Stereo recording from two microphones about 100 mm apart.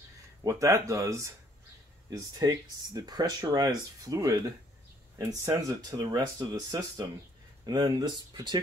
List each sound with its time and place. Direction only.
0.4 s speech: 30° right (ahead or behind)